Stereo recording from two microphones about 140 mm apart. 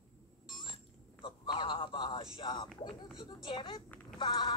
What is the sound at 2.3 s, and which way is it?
A child's voice, 30° left (ahead or behind).